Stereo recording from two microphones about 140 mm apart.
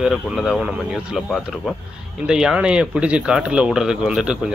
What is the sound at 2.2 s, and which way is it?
Speech, 5° right (ahead or behind).